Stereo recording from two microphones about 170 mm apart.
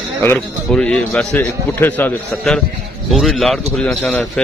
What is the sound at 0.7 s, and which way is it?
A man's voice, 5° left (ahead or behind).